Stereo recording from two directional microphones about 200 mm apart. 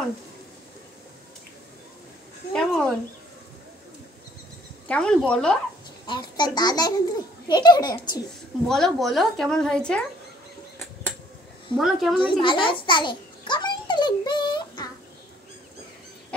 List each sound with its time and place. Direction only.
2.5 s a sound: 5° left (ahead or behind)
4.8 s a woman's voice: 5° left (ahead or behind)
6.0 s a child's voice: 20° left (ahead or behind)
8.6 s a woman's voice: centre (ahead or behind)
11.7 s a woman's voice: centre (ahead or behind)
12.3 s a child's voice: 25° left (ahead or behind)
13.5 s a sound: 20° left (ahead or behind)